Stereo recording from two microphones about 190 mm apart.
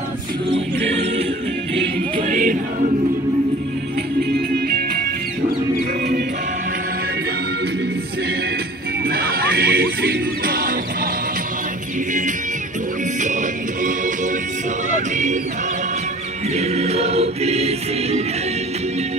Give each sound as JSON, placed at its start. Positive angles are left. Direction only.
{"t": 0.8, "sound": "a capella", "side_deg": -30}
{"t": 1.8, "sound": "music", "side_deg": -30}
{"t": 2.3, "sound": "choir", "side_deg": -45}
{"t": 9.0, "sound": "music", "side_deg": -55}
{"t": 14.9, "sound": "music", "side_deg": -40}
{"t": 16.5, "sound": "choir", "side_deg": -35}